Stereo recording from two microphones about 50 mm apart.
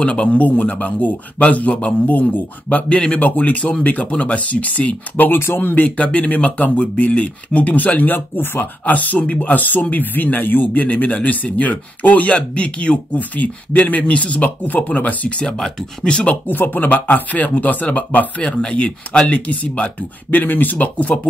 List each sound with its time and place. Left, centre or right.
0.0 s speech: left
5.9 s speech: left
16.4 s speech: left
18.4 s speech: left
20.2 s speech: left